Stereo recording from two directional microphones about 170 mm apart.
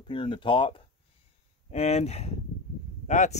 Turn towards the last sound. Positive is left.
turn(degrees=45)  # may be behind; listen again after turning